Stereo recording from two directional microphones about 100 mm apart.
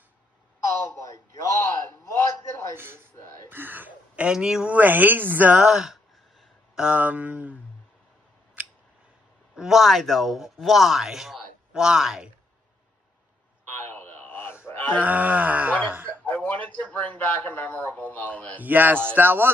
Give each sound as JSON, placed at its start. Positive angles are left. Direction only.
{"t": 1.0, "sound": "a sound", "side_deg": 35}
{"t": 2.7, "sound": "speech", "side_deg": -20}
{"t": 3.4, "sound": "throat clearing", "side_deg": -20}
{"t": 4.3, "sound": "speech", "side_deg": -5}
{"t": 9.6, "sound": "speech", "side_deg": -5}
{"t": 13.7, "sound": "a sound", "side_deg": 20}
{"t": 15.0, "sound": "speech", "side_deg": -15}
{"t": 16.3, "sound": "a man's voice", "side_deg": 15}
{"t": 18.6, "sound": "speech", "side_deg": -15}